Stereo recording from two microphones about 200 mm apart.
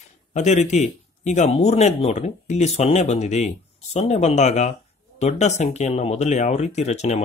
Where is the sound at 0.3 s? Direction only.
35° left (ahead or behind).